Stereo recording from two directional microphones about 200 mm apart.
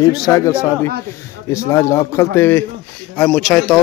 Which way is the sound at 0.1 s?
15° left (ahead or behind).